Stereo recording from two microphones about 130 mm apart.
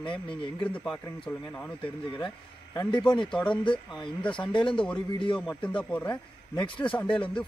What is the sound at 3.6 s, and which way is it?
Speech, 40° left (ahead or behind).